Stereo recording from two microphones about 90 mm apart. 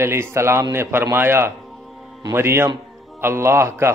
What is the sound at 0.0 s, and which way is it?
A man's voice, 30° right (ahead or behind).